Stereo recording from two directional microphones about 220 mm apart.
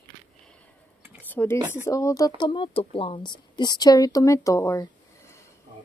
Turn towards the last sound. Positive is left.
turn(degrees=15)  # may be behind; listen again after turning